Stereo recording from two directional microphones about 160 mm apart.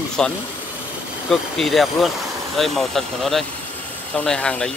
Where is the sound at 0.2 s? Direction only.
5° left (ahead or behind).